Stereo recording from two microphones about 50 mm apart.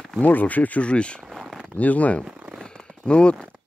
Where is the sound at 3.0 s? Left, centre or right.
Centre.